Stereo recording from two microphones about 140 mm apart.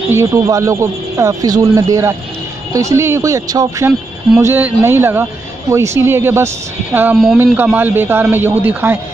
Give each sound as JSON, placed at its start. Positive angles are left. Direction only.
{"t": 0.1, "sound": "speech", "side_deg": -20}